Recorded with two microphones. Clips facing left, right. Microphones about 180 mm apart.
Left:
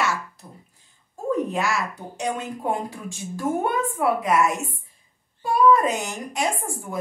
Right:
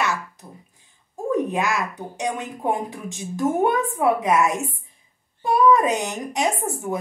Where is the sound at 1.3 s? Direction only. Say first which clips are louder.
Right 2 dB; 15° right (ahead or behind).